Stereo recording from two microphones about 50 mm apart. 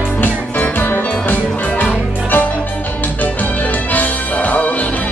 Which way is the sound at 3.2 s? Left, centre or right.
Left.